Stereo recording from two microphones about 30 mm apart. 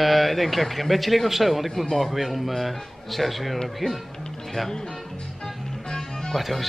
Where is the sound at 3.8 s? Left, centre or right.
Centre.